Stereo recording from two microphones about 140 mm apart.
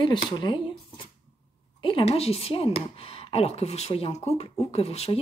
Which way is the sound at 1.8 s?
40° left (ahead or behind).